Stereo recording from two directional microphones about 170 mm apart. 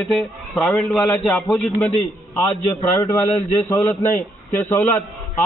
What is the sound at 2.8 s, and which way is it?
A man's voice, 15° left (ahead or behind).